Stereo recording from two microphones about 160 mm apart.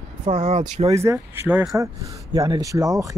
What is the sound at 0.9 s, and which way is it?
Speech, 20° right (ahead or behind).